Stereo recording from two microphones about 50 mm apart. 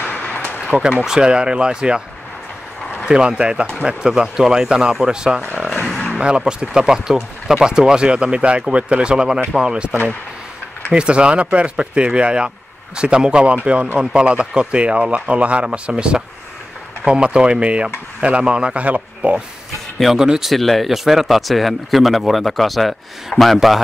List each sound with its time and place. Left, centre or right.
0.0 s a sound: left
1.0 s speech: centre
3.1 s speech: centre
20.2 s speech: centre
20.5 s speech: centre